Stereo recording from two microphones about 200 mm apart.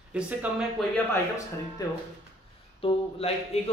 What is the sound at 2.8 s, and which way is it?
Speech, 30° left (ahead or behind).